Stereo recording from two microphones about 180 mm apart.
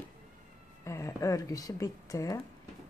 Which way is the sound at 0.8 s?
15° left (ahead or behind).